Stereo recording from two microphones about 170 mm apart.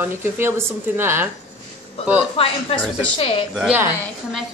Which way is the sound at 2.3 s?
35° left (ahead or behind).